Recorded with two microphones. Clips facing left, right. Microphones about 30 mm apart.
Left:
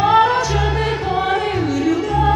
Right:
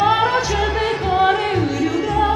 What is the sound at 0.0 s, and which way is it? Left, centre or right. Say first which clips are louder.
Music: left 2 dB; centre.